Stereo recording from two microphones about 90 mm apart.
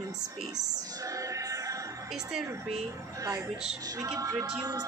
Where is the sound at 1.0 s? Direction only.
40° right (ahead or behind).